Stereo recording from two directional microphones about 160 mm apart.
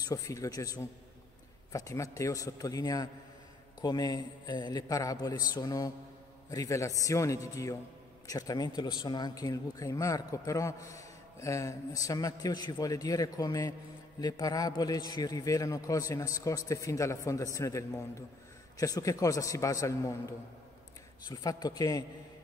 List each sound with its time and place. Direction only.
0.0 s a man's voice: 20° left (ahead or behind)